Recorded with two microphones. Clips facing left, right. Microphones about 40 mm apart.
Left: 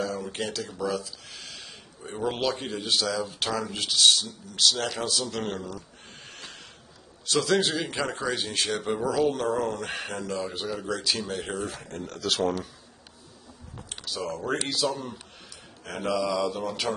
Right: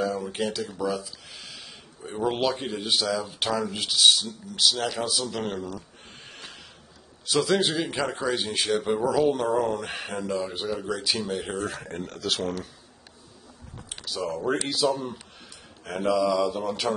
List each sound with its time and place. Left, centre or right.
0.0 s a sound: centre
0.7 s a man's voice: centre
11.6 s speech: right
12.1 s speech: centre
13.8 s speech: centre